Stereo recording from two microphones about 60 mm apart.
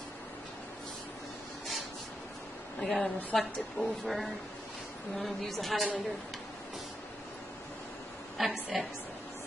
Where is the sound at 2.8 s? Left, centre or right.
Centre.